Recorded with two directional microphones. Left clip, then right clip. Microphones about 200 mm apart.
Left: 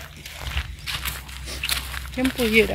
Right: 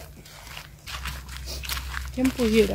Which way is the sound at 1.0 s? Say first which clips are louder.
Left 4 dB; 10° left (ahead or behind).